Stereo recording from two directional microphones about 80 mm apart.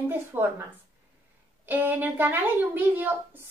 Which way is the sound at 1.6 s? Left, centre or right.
Right.